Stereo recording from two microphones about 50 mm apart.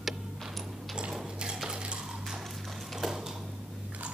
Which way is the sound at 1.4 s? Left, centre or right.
Centre.